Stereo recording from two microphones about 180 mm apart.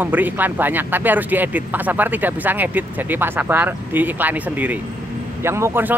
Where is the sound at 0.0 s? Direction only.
10° right (ahead or behind).